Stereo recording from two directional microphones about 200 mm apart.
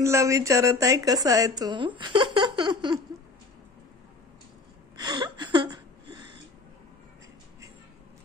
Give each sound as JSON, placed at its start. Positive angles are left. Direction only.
{"t": 0.0, "sound": "a woman's voice", "side_deg": -15}
{"t": 4.9, "sound": "gasp", "side_deg": -20}